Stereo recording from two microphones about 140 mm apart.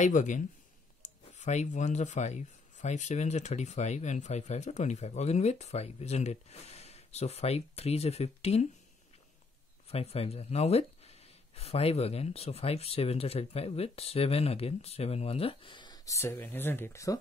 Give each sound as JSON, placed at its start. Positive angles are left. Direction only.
{"t": 0.0, "sound": "speech", "side_deg": 60}
{"t": 1.0, "sound": "a sound", "side_deg": 60}
{"t": 1.4, "sound": "speech", "side_deg": 55}
{"t": 9.8, "sound": "speech", "side_deg": 45}